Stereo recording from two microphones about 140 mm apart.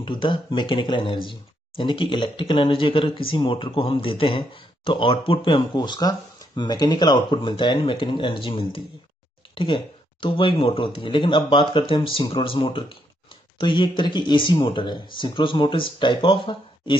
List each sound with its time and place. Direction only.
0.0 s speech: 35° left (ahead or behind)
10.2 s speech: 40° left (ahead or behind)